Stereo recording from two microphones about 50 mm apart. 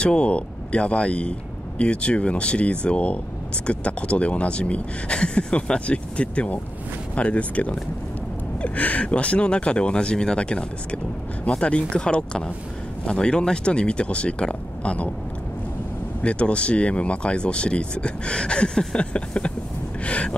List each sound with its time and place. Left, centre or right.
0.0 s speech: centre
16.2 s speech: left